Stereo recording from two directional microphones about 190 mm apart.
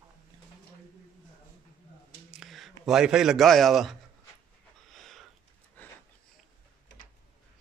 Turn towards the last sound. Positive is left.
turn(degrees=65)  # may be behind; listen again after turning